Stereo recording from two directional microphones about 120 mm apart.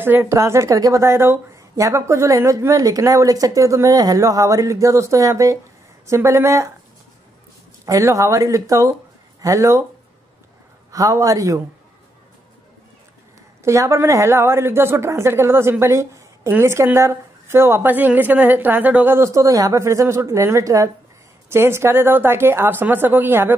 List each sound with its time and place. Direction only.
0.0 s a woman's voice: 20° right (ahead or behind)
7.8 s a woman's voice: 25° right (ahead or behind)
10.9 s a woman's voice: 30° right (ahead or behind)
13.7 s a woman's voice: 25° right (ahead or behind)